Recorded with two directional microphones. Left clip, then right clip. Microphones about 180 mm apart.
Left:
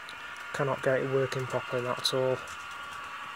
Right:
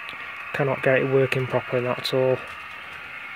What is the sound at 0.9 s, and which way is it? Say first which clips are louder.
Speech: right 9 dB; 25° right (ahead or behind).